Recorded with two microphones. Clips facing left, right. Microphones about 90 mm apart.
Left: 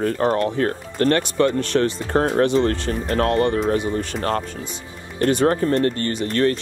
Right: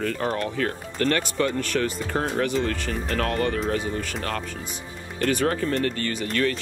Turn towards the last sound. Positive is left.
turn(degrees=40)  # may be behind; listen again after turning